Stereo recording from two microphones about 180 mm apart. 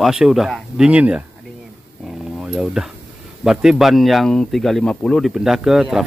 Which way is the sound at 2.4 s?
5° right (ahead or behind).